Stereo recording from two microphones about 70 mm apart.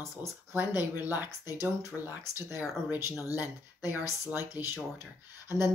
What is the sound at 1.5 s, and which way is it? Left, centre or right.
Speech, right.